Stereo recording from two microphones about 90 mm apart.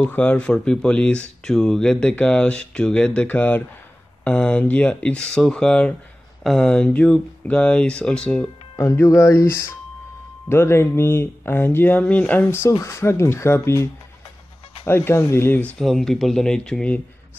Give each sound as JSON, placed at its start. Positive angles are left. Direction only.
{"t": 0.0, "sound": "speech", "side_deg": 15}
{"t": 8.7, "sound": "speech", "side_deg": 35}
{"t": 14.9, "sound": "speech", "side_deg": 25}
{"t": 15.8, "sound": "speech", "side_deg": 5}